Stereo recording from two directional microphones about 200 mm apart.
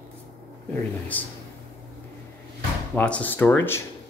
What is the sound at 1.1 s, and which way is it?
Speech, 10° left (ahead or behind).